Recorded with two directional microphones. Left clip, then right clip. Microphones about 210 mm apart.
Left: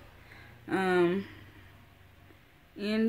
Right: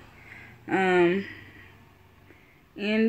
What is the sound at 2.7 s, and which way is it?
Speech, 10° right (ahead or behind).